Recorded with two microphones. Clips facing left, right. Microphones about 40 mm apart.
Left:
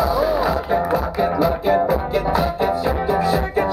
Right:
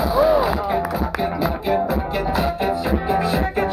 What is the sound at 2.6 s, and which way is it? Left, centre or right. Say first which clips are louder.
Music: left 1 dB; right.